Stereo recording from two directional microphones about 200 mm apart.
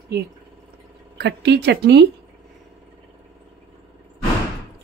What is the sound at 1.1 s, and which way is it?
Speech, 60° right (ahead or behind).